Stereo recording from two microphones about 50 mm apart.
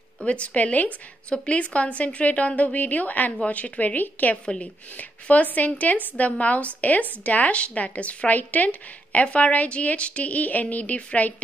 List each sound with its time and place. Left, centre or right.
0.2 s a woman's voice: left